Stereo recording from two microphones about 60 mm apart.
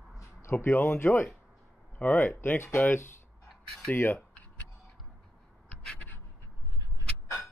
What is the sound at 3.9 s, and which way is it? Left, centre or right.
Speech, left.